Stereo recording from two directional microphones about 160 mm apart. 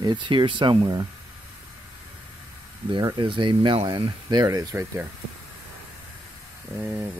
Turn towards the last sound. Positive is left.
turn(degrees=-10)  # may be behind; listen again after turning